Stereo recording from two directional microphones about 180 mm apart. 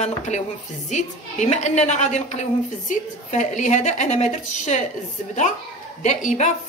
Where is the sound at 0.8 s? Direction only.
40° left (ahead or behind).